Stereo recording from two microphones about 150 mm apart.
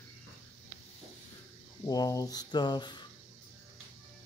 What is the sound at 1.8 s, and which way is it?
Speech, 25° left (ahead or behind).